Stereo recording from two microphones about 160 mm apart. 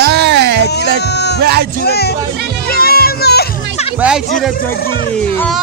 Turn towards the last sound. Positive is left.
turn(degrees=0)  # may be behind; listen again after turning